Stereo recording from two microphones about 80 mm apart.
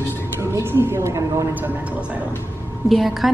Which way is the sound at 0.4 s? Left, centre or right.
Right.